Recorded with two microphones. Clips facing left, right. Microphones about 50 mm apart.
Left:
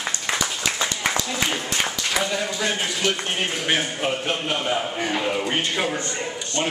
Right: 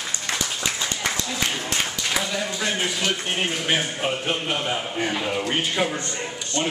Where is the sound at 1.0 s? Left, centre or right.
Centre.